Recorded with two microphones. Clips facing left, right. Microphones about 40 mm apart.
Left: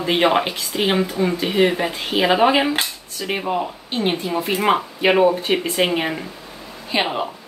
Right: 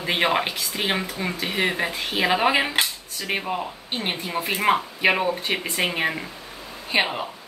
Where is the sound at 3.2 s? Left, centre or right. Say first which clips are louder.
Left 3 dB; centre.